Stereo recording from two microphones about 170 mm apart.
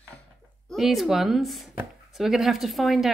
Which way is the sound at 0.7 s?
Centre (ahead or behind).